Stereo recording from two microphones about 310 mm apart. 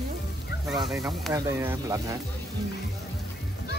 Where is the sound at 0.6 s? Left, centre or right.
Centre.